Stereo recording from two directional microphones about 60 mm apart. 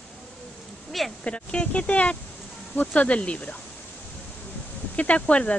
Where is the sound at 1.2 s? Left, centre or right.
Centre.